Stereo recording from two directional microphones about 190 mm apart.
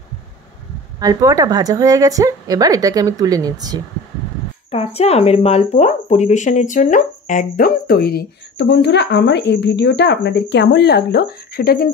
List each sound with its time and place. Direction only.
0.9 s a woman's voice: 20° right (ahead or behind)
4.6 s speech: 30° left (ahead or behind); by 11.9 s 55° left (ahead or behind)